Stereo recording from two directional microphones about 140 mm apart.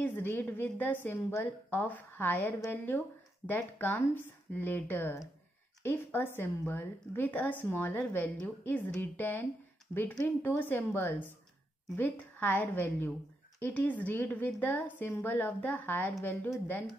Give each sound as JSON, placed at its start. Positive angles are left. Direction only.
{"t": 0.0, "sound": "a woman's voice", "side_deg": 15}